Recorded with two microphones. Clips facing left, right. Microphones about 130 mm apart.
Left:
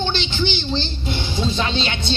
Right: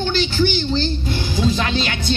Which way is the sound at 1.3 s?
25° left (ahead or behind).